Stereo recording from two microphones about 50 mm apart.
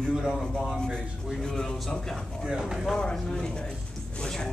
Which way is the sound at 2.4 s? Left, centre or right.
Centre.